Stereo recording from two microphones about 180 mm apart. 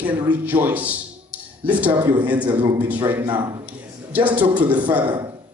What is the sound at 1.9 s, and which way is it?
Speech, 25° right (ahead or behind).